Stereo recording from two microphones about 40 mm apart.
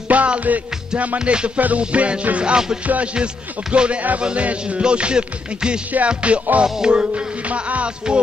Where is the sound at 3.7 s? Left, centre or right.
Right.